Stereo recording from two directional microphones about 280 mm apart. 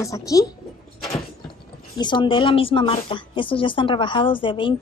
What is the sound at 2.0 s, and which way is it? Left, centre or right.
Speech, centre.